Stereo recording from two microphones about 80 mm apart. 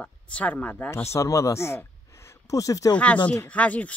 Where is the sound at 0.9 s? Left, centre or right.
Left.